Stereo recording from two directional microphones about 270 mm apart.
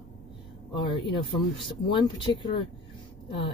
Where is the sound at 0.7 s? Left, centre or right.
Centre.